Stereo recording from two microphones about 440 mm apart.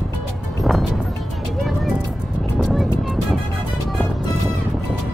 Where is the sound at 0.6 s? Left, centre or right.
Centre.